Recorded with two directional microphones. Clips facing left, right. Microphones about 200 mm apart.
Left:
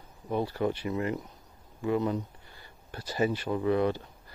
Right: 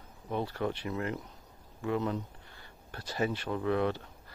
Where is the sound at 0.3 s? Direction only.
5° left (ahead or behind).